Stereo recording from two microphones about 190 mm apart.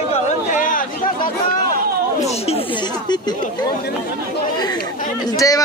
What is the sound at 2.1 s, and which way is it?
Speech, 35° left (ahead or behind).